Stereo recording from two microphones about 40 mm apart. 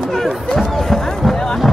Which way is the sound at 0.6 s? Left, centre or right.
Centre.